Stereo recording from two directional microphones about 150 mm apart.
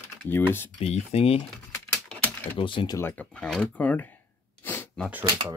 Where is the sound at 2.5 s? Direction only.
35° left (ahead or behind).